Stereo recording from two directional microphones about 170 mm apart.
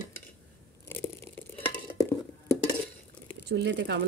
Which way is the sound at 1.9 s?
20° left (ahead or behind).